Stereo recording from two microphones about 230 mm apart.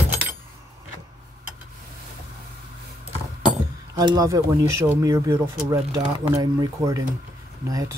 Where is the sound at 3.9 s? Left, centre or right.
Centre.